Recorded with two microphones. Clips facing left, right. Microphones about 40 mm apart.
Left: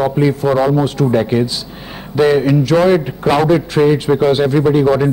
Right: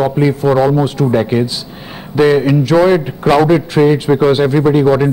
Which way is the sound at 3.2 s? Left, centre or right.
Right.